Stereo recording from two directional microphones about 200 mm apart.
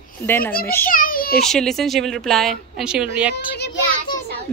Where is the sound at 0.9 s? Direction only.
45° left (ahead or behind).